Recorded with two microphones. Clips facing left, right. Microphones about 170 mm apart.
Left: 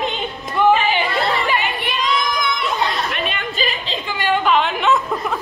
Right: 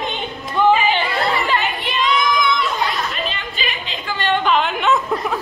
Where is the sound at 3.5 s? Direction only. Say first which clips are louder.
Left 4 dB; 35° left (ahead or behind).